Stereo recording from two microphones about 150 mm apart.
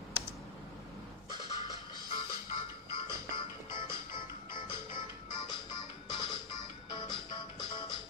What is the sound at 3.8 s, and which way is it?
Music, 30° left (ahead or behind).